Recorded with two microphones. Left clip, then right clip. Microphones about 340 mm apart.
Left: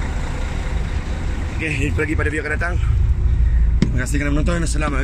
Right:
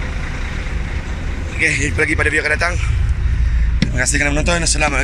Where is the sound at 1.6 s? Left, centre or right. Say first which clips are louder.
Right 7 dB; centre.